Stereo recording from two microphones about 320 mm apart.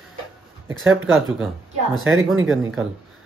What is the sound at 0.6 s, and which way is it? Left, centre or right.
Speech, centre.